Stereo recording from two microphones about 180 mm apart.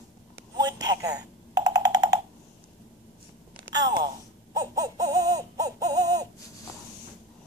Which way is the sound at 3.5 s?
20° right (ahead or behind).